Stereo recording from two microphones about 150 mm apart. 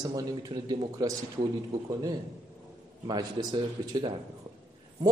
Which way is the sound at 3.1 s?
25° right (ahead or behind).